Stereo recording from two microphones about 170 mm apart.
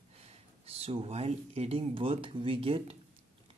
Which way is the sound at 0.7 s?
35° right (ahead or behind).